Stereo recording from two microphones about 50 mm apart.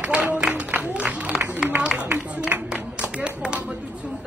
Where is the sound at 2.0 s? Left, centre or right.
Right.